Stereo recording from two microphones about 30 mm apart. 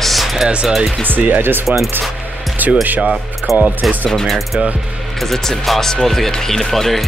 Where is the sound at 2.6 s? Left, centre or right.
Right.